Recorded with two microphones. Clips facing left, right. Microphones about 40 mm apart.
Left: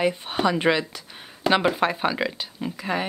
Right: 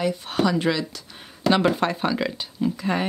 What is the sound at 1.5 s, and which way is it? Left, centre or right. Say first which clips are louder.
Speech: even; centre.